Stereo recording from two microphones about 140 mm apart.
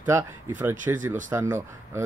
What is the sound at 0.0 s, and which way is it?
Speech, 20° right (ahead or behind).